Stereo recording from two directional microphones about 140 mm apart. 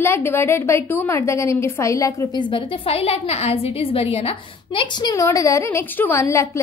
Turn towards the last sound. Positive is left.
turn(degrees=20)  # may be behind; listen again after turning